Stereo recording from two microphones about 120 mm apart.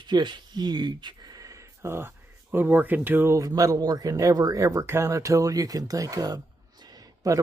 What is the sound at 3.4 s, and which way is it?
Speech, 30° right (ahead or behind).